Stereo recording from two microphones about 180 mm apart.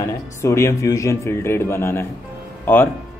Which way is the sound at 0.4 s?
15° left (ahead or behind).